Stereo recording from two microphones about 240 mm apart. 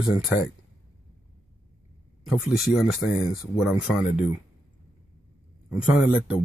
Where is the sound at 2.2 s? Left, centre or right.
Centre.